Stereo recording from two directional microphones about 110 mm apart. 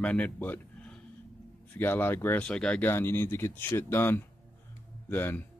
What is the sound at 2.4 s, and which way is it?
Speech, 10° left (ahead or behind).